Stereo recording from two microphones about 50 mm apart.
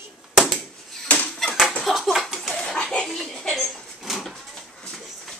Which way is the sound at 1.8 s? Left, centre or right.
Centre.